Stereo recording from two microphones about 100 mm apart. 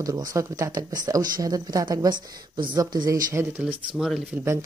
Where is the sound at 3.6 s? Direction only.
10° right (ahead or behind).